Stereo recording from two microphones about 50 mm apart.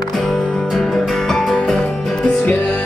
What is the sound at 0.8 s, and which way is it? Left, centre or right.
Music, centre.